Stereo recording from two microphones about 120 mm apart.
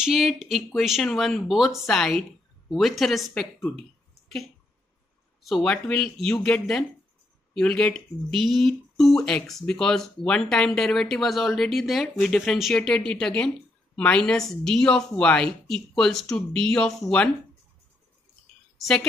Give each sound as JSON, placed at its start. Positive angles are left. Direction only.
{"t": 0.0, "sound": "speech", "side_deg": 0}
{"t": 5.4, "sound": "speech", "side_deg": 0}
{"t": 18.8, "sound": "a woman's voice", "side_deg": 5}